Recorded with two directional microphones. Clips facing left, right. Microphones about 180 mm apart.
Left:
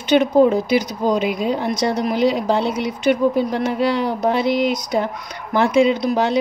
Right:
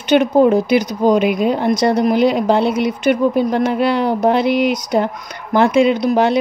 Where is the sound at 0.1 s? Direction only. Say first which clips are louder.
Right 2 dB; 60° right (ahead or behind).